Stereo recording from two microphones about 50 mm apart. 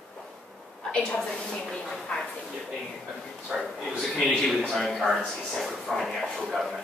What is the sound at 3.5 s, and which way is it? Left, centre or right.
Speech, centre.